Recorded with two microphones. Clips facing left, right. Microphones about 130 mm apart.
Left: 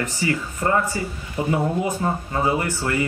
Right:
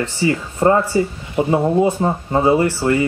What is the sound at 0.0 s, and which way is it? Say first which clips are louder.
Speech: right 5 dB; 30° right (ahead or behind).